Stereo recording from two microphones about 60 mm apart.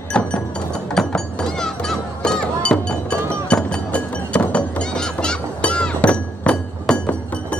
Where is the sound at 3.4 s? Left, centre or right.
Centre.